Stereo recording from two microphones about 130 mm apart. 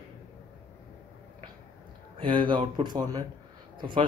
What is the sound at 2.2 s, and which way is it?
Speech, 40° right (ahead or behind).